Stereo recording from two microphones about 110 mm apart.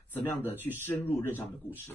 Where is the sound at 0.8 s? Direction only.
20° left (ahead or behind).